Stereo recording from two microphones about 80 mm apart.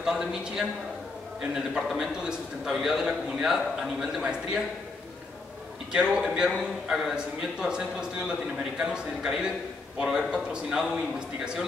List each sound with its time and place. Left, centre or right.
0.0 s a man's voice: centre
5.9 s a man's voice: centre